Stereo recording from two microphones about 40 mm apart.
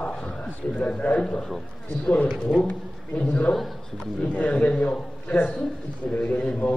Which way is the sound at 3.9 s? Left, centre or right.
Left.